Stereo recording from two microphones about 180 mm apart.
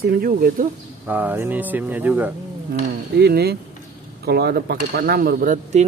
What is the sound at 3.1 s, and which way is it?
Speech, 65° right (ahead or behind).